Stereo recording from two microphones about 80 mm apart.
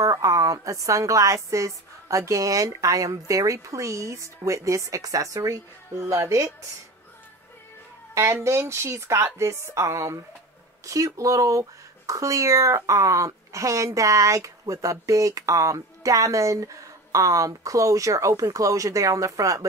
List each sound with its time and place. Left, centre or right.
0.0 s speech: right
8.1 s speech: right